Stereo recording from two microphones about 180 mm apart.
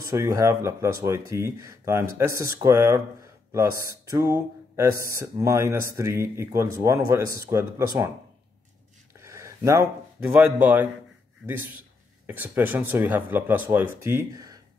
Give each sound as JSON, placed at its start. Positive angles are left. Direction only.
{"t": 0.0, "sound": "speech", "side_deg": -15}
{"t": 9.2, "sound": "speech", "side_deg": -15}
{"t": 12.3, "sound": "speech", "side_deg": -10}